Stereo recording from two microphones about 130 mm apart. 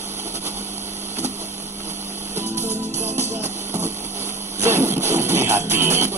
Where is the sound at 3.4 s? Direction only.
20° right (ahead or behind).